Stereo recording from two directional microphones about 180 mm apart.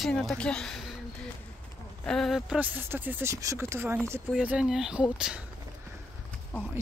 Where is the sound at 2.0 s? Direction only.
Centre (ahead or behind).